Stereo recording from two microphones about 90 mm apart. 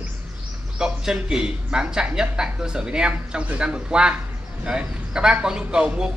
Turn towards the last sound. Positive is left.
turn(degrees=-10)  # may be behind; listen again after turning